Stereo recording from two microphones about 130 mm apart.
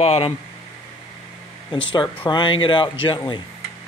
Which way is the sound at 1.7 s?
40° left (ahead or behind).